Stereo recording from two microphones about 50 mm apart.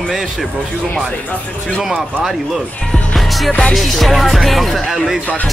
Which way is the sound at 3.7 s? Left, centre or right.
Centre.